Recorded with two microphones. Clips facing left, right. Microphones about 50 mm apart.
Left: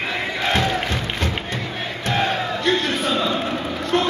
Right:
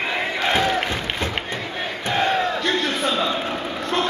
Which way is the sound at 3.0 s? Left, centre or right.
Centre.